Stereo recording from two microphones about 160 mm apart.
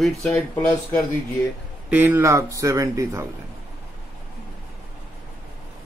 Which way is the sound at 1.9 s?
10° right (ahead or behind).